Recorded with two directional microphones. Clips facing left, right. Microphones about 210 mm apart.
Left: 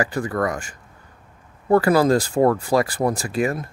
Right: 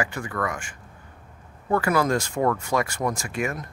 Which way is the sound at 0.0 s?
35° left (ahead or behind).